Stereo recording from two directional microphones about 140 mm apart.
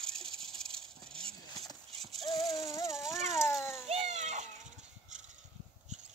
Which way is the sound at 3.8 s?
55° right (ahead or behind).